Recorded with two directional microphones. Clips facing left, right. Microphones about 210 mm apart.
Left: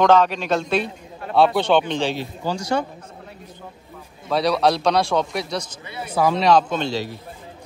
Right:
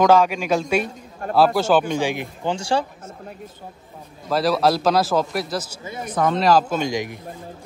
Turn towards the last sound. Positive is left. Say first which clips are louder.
# right 1 dB
turn(degrees=-15)  # may be behind; listen again after turning